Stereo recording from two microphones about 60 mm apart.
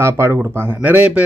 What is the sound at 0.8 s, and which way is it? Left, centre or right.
Speech, right.